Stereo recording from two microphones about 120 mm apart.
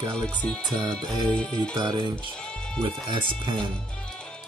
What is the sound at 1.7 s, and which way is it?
Speech, 40° right (ahead or behind).